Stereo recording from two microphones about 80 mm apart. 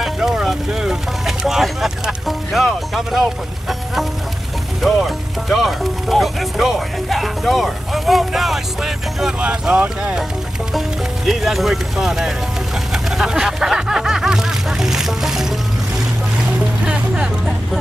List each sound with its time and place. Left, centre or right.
0.0 s vehicle: centre
4.8 s music: centre
9.4 s speech: centre
11.2 s speech: centre
12.9 s snicker: centre
16.8 s music: centre